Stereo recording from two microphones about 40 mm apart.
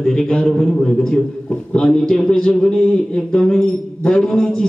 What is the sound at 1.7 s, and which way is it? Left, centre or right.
Speech, centre.